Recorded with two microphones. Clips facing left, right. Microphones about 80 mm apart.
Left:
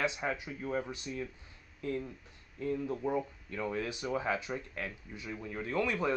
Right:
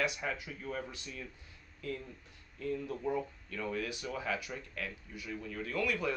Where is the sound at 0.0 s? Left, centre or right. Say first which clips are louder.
Left 2 dB; left.